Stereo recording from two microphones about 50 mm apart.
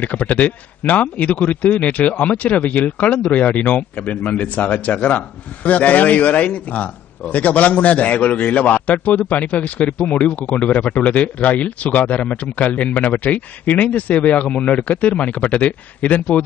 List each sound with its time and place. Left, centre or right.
0.0 s speech: left